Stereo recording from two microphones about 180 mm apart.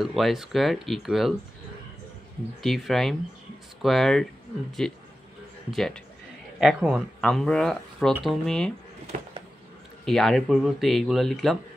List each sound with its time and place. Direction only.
0.0 s speech: centre (ahead or behind)
2.6 s speech: centre (ahead or behind)
9.1 s a sound: 45° right (ahead or behind)
10.0 s speech: centre (ahead or behind)